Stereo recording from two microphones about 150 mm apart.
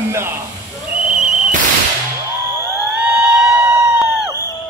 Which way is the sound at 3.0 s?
10° right (ahead or behind).